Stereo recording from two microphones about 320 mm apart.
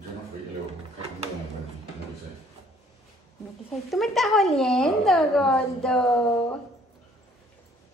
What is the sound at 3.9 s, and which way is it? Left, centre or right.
A woman's voice, centre.